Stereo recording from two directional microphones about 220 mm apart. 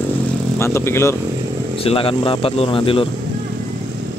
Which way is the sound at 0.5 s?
10° left (ahead or behind).